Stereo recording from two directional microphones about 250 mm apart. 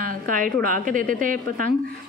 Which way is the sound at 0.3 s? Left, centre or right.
Right.